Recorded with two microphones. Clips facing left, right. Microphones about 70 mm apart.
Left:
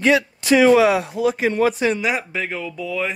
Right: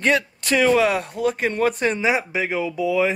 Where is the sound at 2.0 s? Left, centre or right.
Centre.